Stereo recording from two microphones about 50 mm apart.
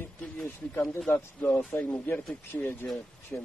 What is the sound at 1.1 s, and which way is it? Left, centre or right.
Speech, left.